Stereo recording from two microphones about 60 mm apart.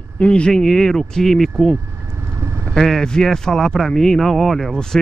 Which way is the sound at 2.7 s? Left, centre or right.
Centre.